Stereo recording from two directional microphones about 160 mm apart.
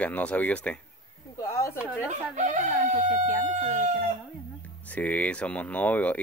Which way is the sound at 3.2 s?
45° right (ahead or behind).